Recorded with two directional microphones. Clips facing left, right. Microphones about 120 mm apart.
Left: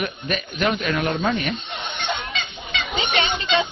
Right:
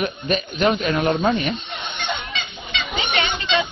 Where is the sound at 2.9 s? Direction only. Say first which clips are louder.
Left 1 dB; 25° left (ahead or behind).